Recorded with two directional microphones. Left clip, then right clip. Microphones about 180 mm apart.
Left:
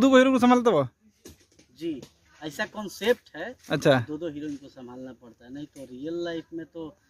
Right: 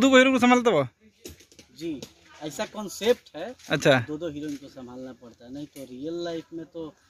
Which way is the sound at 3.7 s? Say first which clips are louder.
Right 1 dB; 15° left (ahead or behind).